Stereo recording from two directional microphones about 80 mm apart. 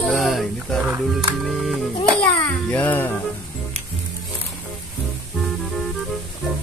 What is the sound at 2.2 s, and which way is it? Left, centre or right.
Music, left.